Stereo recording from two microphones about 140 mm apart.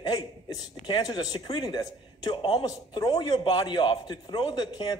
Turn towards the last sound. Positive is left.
turn(degrees=30)  # may be behind; listen again after turning